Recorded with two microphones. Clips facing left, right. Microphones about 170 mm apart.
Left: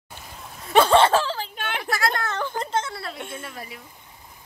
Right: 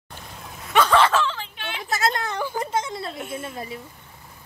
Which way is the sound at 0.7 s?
30° left (ahead or behind).